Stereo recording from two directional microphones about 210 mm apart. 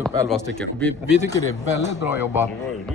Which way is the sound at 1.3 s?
15° left (ahead or behind).